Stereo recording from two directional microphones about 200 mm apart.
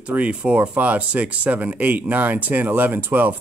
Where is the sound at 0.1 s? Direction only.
5° right (ahead or behind).